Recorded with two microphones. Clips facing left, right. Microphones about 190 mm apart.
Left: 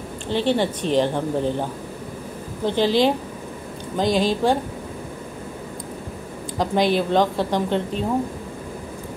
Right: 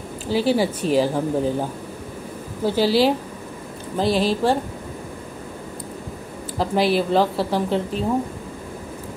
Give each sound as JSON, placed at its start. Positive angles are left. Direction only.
{"t": 0.3, "sound": "a woman's voice", "side_deg": -5}
{"t": 6.6, "sound": "a woman's voice", "side_deg": -5}